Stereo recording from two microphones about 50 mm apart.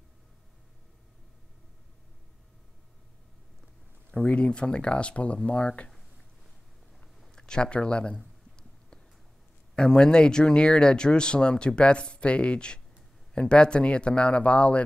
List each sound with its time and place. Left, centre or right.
4.2 s speech: left
7.2 s speech: centre
9.8 s speech: centre